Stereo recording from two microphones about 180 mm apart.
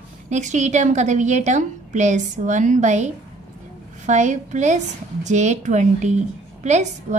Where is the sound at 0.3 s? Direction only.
40° right (ahead or behind).